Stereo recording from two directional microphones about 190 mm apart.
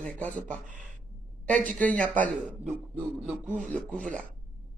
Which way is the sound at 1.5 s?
10° left (ahead or behind).